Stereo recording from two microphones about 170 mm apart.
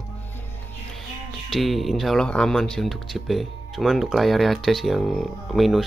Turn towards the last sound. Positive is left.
turn(degrees=0)  # may be behind; listen again after turning